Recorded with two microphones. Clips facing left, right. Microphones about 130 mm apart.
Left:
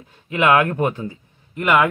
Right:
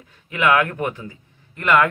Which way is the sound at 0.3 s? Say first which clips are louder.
Left 2 dB; 25° left (ahead or behind).